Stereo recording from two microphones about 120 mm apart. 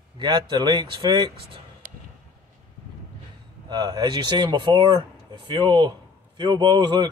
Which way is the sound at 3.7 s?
35° right (ahead or behind).